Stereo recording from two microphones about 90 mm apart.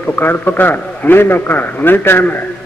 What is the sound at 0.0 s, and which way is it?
A man's voice, 20° left (ahead or behind).